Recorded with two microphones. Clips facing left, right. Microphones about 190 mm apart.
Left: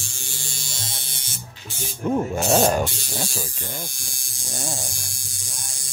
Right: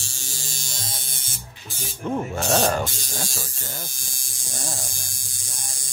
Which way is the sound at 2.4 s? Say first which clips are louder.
Left 2 dB; 15° left (ahead or behind).